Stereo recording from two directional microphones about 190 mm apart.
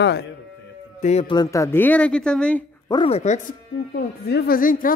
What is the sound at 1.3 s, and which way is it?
Speech, 20° left (ahead or behind).